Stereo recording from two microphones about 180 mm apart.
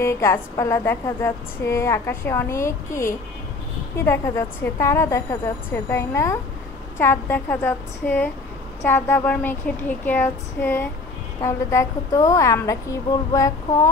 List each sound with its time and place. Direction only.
0.0 s speech: 15° left (ahead or behind)